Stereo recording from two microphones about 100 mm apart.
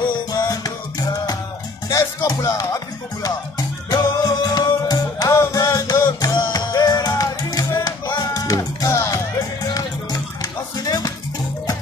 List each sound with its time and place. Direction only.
0.0 s music: 45° left (ahead or behind)